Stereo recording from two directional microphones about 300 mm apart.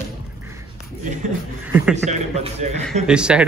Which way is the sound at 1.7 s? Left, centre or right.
Centre.